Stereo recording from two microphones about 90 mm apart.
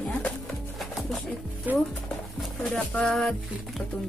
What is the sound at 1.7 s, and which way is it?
Speech, 20° right (ahead or behind).